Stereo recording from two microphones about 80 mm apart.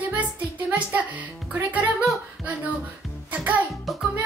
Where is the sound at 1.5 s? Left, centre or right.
Centre.